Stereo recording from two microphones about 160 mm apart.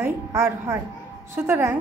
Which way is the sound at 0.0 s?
20° right (ahead or behind).